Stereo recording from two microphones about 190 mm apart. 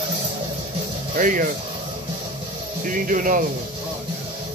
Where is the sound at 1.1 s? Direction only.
45° right (ahead or behind).